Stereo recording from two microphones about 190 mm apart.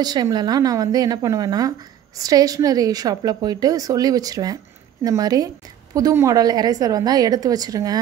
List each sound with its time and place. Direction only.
0.0 s a woman's voice: 20° right (ahead or behind)